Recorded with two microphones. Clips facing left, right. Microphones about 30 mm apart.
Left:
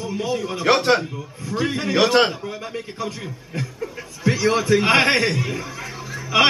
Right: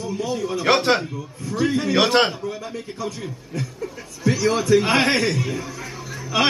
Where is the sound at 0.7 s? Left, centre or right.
Centre.